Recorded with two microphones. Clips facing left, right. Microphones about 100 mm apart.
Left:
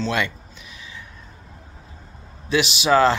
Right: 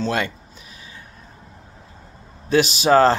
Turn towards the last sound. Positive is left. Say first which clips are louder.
# right 2 dB
turn(degrees=-45)  # may be behind; listen again after turning